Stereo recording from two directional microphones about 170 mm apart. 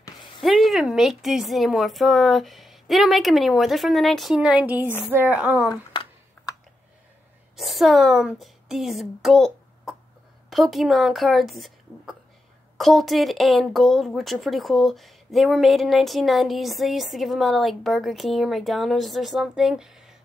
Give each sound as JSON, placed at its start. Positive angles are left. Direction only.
{"t": 0.4, "sound": "a woman's voice", "side_deg": 0}
{"t": 5.7, "sound": "a sound", "side_deg": 25}
{"t": 7.5, "sound": "a woman's voice", "side_deg": 0}